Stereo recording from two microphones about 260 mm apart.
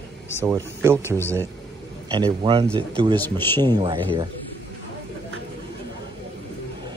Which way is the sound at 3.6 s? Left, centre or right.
Centre.